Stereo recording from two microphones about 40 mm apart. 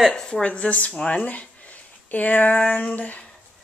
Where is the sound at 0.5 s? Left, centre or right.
Left.